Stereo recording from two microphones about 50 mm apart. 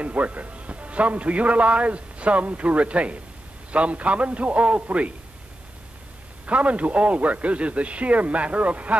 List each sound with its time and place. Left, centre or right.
0.0 s a man's voice: right
6.4 s a man's voice: right